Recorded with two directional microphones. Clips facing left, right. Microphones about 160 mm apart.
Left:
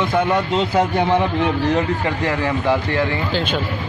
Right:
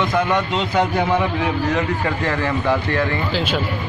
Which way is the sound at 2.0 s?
15° left (ahead or behind).